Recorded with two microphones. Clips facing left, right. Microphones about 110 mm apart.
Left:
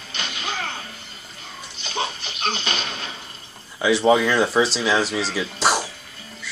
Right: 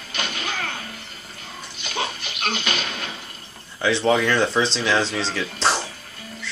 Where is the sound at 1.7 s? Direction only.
30° left (ahead or behind).